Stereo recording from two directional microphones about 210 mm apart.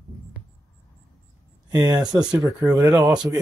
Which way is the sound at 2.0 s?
5° right (ahead or behind).